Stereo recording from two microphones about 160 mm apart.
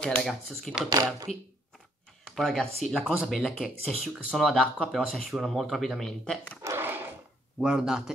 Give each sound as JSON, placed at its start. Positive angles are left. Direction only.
{"t": 0.0, "sound": "speech", "side_deg": 5}
{"t": 0.8, "sound": "speech", "side_deg": -25}
{"t": 2.2, "sound": "speech", "side_deg": 5}
{"t": 6.6, "sound": "dog", "side_deg": -15}
{"t": 7.6, "sound": "speech", "side_deg": -5}